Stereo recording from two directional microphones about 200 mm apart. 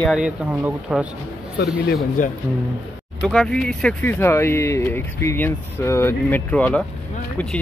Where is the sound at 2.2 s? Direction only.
40° left (ahead or behind).